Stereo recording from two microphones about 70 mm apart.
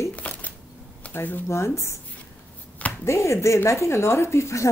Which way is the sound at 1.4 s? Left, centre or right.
Left.